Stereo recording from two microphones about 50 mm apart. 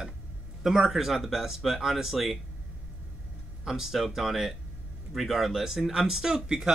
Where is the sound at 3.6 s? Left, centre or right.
Centre.